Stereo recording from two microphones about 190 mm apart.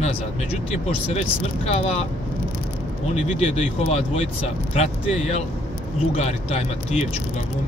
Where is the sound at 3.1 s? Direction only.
35° left (ahead or behind).